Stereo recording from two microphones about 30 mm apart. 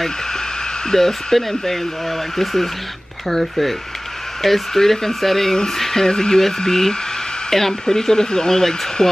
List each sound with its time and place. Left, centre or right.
0.9 s speech: centre
5.8 s a sound: centre
6.0 s speech: left